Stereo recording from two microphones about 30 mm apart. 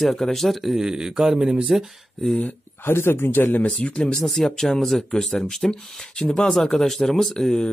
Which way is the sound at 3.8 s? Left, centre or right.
Left.